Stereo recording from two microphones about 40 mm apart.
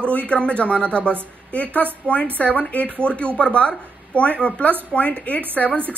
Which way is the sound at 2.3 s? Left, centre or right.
Left.